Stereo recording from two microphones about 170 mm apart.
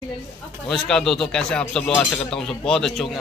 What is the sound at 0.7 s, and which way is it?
A man's voice, 5° left (ahead or behind).